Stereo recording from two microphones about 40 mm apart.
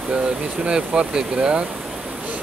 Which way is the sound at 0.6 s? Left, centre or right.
Right.